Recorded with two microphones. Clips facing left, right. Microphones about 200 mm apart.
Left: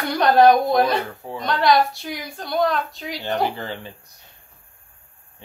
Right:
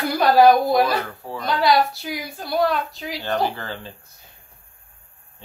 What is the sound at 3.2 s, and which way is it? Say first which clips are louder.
Speech: even; 20° left (ahead or behind).